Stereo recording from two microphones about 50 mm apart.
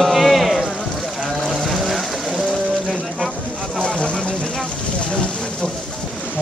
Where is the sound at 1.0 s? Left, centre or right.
Centre.